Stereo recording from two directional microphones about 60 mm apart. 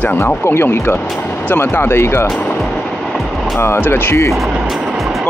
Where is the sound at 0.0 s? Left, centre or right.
Left.